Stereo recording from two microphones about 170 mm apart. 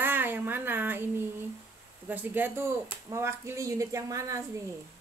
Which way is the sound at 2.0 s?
10° right (ahead or behind).